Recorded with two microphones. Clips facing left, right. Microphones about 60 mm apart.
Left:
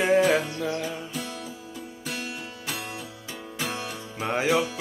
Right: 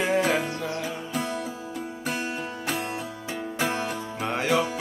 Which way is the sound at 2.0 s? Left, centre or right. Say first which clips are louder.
Right 4 dB; right.